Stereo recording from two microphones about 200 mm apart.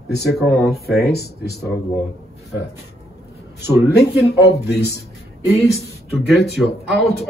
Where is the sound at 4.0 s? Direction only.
55° left (ahead or behind).